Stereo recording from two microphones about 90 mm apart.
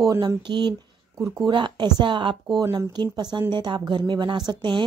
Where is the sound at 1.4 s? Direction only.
60° right (ahead or behind).